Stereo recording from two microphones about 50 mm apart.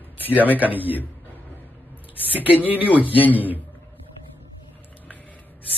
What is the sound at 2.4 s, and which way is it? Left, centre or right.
Speech, right.